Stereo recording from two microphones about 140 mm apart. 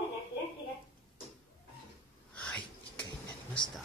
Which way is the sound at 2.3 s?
5° left (ahead or behind).